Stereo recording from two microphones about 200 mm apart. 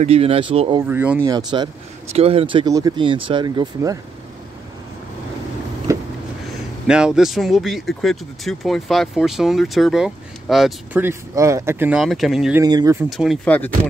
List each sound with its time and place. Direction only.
0.0 s speech: 30° right (ahead or behind)
0.8 s speech: 10° right (ahead or behind)
5.9 s a sound: 15° right (ahead or behind)
6.9 s speech: 5° right (ahead or behind)
12.5 s speech: 20° right (ahead or behind)
13.1 s speech: centre (ahead or behind)